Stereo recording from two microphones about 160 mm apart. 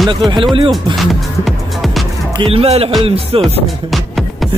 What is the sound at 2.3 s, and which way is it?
Music, 35° right (ahead or behind).